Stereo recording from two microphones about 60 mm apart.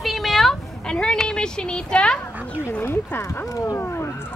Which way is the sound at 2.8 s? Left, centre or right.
Left.